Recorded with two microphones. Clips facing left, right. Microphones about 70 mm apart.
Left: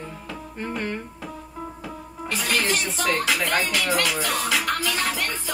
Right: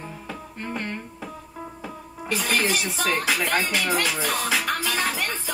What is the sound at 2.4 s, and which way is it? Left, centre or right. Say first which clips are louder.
Speech: even; centre.